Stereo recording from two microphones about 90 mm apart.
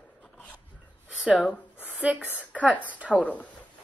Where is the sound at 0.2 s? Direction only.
15° left (ahead or behind).